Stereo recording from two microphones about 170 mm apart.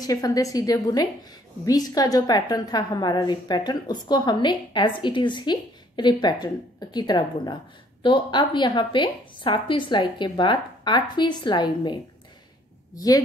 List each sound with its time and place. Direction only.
0.0 s a woman's voice: 20° left (ahead or behind)